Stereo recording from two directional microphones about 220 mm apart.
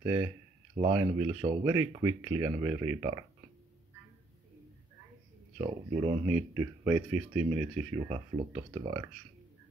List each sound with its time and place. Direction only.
0.0 s speech: 15° right (ahead or behind)
5.6 s speech: 15° right (ahead or behind)